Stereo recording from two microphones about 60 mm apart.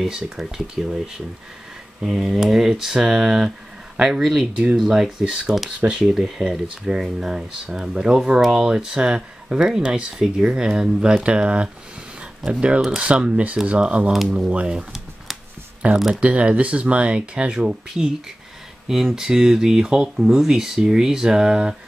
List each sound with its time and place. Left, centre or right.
0.0 s speech: centre